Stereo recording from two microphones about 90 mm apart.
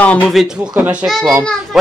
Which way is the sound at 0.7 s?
20° right (ahead or behind).